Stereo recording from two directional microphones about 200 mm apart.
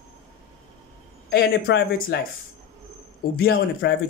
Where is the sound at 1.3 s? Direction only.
55° left (ahead or behind).